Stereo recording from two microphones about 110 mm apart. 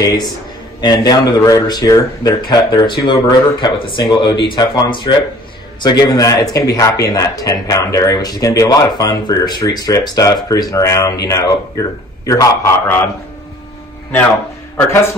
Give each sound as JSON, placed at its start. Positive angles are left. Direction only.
{"t": 0.0, "sound": "a man's voice", "side_deg": 35}